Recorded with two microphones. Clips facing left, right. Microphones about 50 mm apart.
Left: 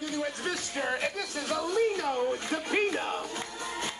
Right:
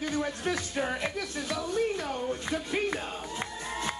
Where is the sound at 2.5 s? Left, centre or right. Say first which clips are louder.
Left 2 dB; left.